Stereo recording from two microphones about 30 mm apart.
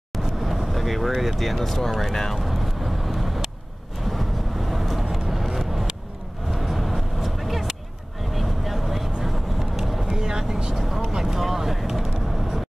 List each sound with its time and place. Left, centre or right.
0.2 s vehicle: centre
0.7 s speech: centre
2.3 s vehicle: centre
10.0 s vehicle: right
10.8 s speech: centre